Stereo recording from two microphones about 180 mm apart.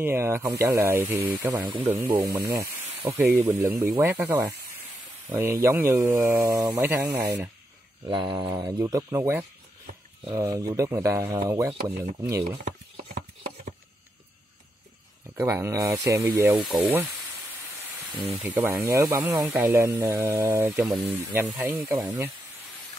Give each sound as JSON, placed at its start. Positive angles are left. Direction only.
{"t": 0.0, "sound": "speech", "side_deg": -15}
{"t": 8.1, "sound": "speech", "side_deg": -25}
{"t": 15.3, "sound": "speech", "side_deg": -15}
{"t": 16.6, "sound": "hiss", "side_deg": 0}
{"t": 18.2, "sound": "speech", "side_deg": -10}